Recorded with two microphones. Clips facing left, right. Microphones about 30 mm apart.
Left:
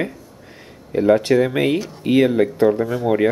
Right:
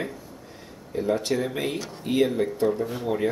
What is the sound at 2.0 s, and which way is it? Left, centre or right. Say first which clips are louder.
Speech: left 7 dB; left.